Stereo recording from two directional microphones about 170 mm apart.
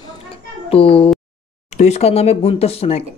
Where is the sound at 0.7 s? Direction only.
35° left (ahead or behind).